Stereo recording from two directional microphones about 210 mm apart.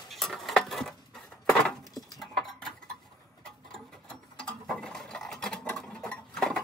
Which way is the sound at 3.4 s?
5° left (ahead or behind).